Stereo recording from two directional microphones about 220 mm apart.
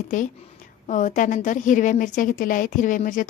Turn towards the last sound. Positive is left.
turn(degrees=35)  # may be behind; listen again after turning